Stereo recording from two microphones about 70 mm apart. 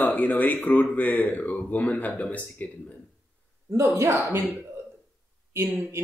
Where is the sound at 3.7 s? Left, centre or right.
Right.